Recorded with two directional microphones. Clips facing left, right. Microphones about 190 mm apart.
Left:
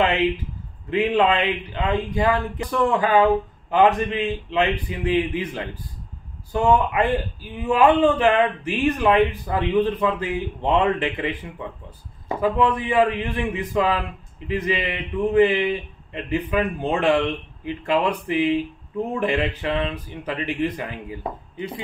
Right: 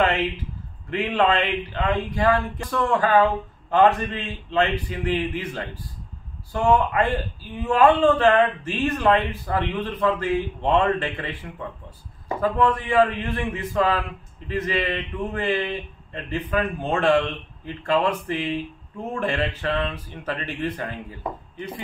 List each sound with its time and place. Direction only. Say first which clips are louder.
0.8 s speech: left 3 dB; 15° left (ahead or behind)
12.4 s speech: left 1 dB; 15° left (ahead or behind)